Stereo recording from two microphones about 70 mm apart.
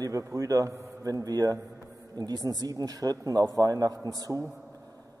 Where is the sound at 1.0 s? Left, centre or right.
Right.